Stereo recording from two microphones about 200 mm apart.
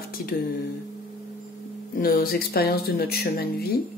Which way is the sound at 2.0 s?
45° left (ahead or behind).